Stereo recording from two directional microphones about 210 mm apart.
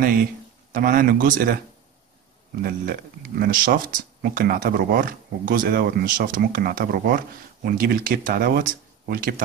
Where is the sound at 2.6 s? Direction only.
45° right (ahead or behind).